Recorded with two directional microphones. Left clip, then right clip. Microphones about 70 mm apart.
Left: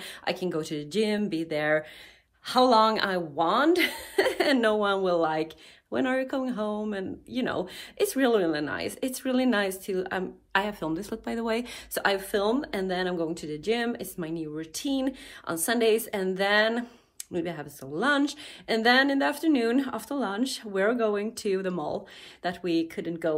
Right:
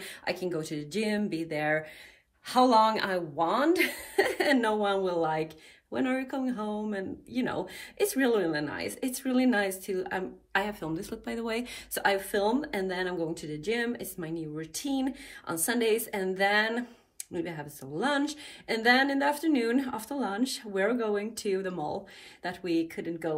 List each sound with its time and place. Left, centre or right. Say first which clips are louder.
0.0 s speech: left 2 dB; left